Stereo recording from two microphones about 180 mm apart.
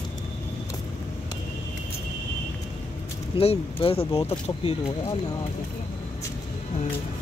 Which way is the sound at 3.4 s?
30° left (ahead or behind).